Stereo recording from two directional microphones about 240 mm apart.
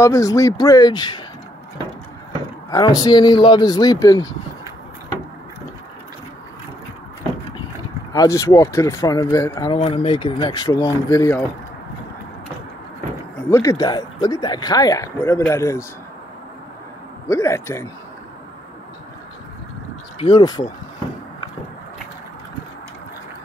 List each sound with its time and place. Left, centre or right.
0.0 s speech: centre
2.7 s speech: centre
8.1 s speech: centre
13.5 s speech: centre
17.3 s speech: centre
20.2 s speech: centre